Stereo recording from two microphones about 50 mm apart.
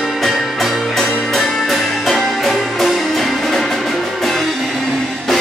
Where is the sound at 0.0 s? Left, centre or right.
Centre.